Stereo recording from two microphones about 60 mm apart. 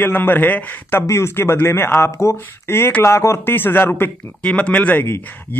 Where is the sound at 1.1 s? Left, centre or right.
Left.